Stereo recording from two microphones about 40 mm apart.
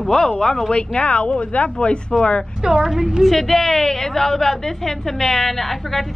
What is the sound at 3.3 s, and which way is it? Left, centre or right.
A woman's voice, centre.